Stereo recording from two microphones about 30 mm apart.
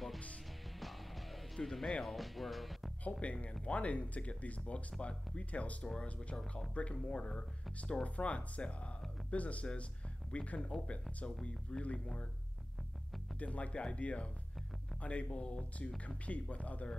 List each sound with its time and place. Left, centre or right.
0.7 s music: centre
2.0 s speech: centre
3.0 s speech: left
13.4 s speech: left
16.3 s speech: left